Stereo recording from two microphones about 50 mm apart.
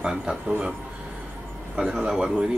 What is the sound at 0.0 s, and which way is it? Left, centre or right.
Speech, centre.